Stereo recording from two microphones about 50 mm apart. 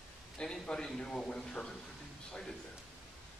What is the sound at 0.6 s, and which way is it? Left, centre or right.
Speech, centre.